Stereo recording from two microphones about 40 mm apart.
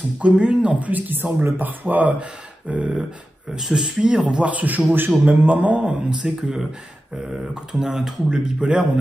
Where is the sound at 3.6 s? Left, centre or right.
Centre.